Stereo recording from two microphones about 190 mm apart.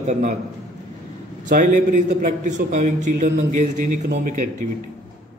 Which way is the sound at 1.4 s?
45° right (ahead or behind).